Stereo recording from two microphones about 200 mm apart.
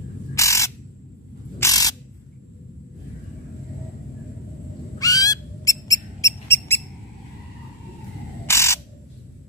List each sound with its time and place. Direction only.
0.3 s crow: 15° left (ahead or behind)
1.6 s a sound: 15° left (ahead or behind)
4.9 s owl: 15° left (ahead or behind)
8.5 s crow: 15° left (ahead or behind)